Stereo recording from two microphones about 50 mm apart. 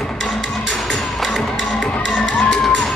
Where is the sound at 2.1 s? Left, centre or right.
Centre.